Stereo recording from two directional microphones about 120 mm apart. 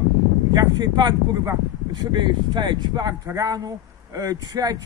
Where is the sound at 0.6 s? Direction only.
35° right (ahead or behind).